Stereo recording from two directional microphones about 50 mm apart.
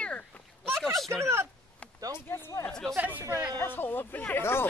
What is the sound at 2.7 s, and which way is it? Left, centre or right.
Speech, centre.